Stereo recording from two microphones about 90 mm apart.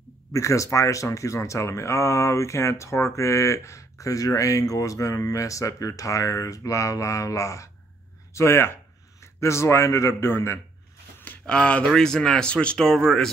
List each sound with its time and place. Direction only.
0.3 s speech: 35° left (ahead or behind)
11.4 s speech: 10° left (ahead or behind)